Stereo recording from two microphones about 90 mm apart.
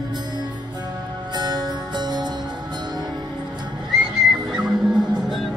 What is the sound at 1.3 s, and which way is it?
Music, 55° right (ahead or behind).